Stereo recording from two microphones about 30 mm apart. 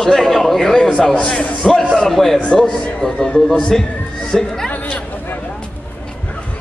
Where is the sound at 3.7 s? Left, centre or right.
Centre.